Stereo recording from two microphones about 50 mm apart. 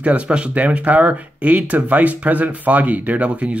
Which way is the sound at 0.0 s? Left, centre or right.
Right.